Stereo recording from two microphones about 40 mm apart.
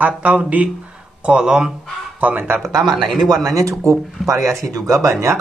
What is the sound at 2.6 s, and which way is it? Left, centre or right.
Speech, centre.